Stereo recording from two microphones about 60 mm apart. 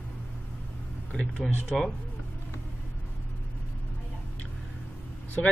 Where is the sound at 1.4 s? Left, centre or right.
Centre.